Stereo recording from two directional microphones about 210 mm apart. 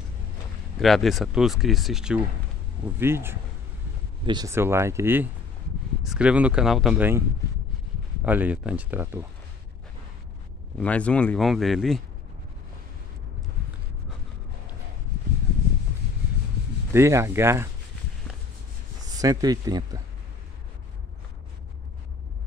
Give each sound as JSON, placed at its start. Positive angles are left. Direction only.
{"t": 0.7, "sound": "speech", "side_deg": 0}
{"t": 10.8, "sound": "speech", "side_deg": 5}
{"t": 16.9, "sound": "speech", "side_deg": -15}
{"t": 19.1, "sound": "speech", "side_deg": -15}